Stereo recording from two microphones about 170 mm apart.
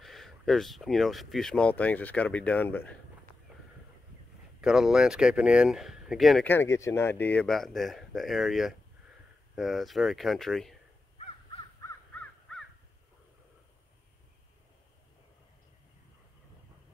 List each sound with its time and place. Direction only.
0.0 s speech: centre (ahead or behind)
4.6 s speech: 5° right (ahead or behind)
6.4 s speech: 15° left (ahead or behind)
11.8 s crow: 10° left (ahead or behind)